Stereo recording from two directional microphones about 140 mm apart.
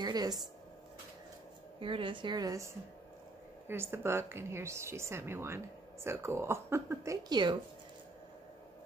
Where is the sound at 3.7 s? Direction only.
15° right (ahead or behind).